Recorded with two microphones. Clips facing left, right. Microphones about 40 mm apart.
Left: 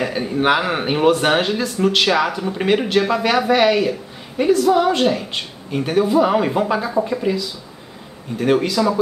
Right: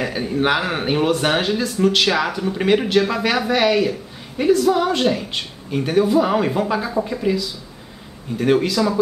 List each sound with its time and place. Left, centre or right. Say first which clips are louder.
0.0 s speech: left 1 dB; centre